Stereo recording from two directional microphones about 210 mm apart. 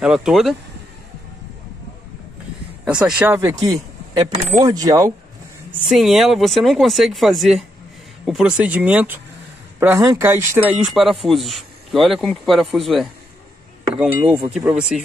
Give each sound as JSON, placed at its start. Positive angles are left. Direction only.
{"t": 0.0, "sound": "speech", "side_deg": -5}
{"t": 3.0, "sound": "speech", "side_deg": -5}
{"t": 5.7, "sound": "speech", "side_deg": 0}